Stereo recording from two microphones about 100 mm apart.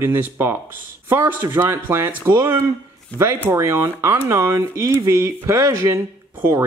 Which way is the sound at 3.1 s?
15° left (ahead or behind).